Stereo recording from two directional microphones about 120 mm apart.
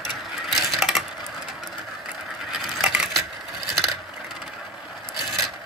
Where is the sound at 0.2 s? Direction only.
5° right (ahead or behind).